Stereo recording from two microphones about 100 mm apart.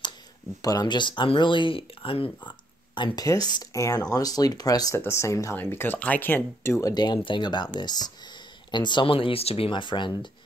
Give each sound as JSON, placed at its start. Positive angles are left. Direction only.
{"t": 0.6, "sound": "speech", "side_deg": 40}
{"t": 3.2, "sound": "speech", "side_deg": 40}
{"t": 4.9, "sound": "speech", "side_deg": 25}
{"t": 6.9, "sound": "speech", "side_deg": 45}
{"t": 9.7, "sound": "speech", "side_deg": 55}